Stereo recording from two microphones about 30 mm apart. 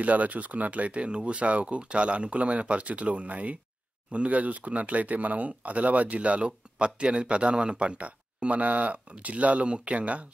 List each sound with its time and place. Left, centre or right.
0.0 s speech: right
1.0 s speech: right
5.5 s speech: right
6.4 s speech: right